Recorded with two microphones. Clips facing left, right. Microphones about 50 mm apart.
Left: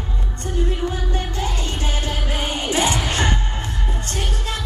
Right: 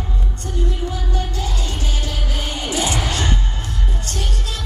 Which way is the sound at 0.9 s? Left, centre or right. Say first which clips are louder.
Even; left.